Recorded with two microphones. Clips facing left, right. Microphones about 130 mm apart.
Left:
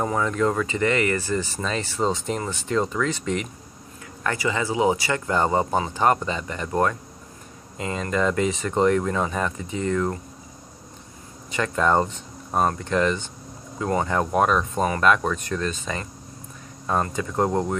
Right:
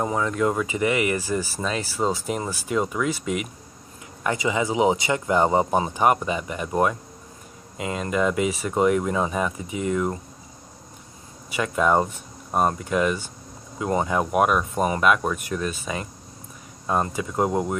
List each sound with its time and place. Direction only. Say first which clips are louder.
0.0 s speech: even; 5° right (ahead or behind)
11.5 s speech: even; 10° right (ahead or behind)